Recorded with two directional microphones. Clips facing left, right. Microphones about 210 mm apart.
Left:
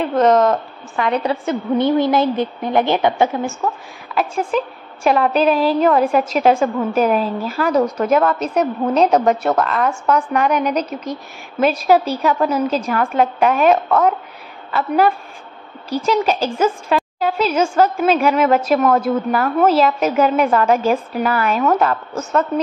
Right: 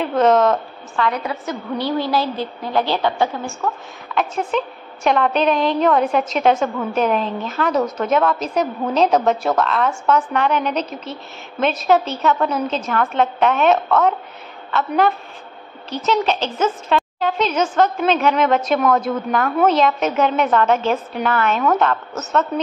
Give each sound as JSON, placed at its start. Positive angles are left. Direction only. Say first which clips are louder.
{"t": 0.0, "sound": "speech", "louder": "left 1 dB", "side_deg": -5}
{"t": 1.1, "sound": "a woman's voice", "louder": "left 6 dB", "side_deg": 30}
{"t": 4.1, "sound": "a woman's voice", "louder": "left 2 dB", "side_deg": 5}